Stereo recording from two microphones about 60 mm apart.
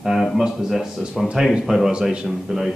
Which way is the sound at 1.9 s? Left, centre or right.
Centre.